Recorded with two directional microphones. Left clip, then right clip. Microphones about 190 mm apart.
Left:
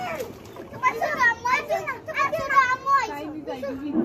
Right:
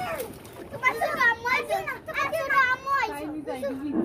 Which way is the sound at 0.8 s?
5° right (ahead or behind).